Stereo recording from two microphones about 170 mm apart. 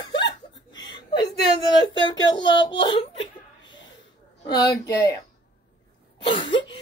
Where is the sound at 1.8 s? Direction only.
25° left (ahead or behind).